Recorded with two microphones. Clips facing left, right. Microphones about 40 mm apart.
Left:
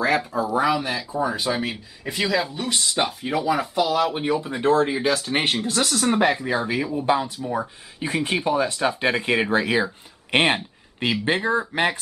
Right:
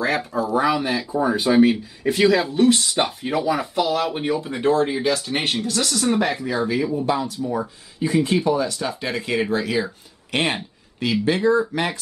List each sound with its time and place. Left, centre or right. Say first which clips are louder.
0.0 s speech: even; centre
5.4 s speech: even; left